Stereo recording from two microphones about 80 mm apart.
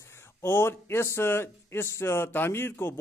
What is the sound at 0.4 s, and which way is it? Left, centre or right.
A man's voice, left.